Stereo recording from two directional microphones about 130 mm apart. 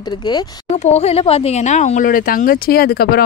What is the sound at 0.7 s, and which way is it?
Speech, 55° left (ahead or behind).